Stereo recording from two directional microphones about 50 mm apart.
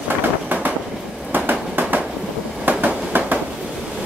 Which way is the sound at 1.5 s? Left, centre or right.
Right.